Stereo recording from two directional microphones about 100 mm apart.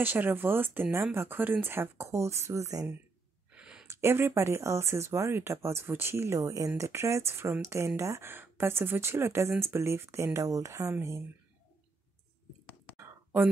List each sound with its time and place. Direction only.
0.0 s speech: 20° right (ahead or behind)
3.5 s a sound: 10° right (ahead or behind)
3.8 s speech: 25° right (ahead or behind)
12.9 s whispering: 20° right (ahead or behind)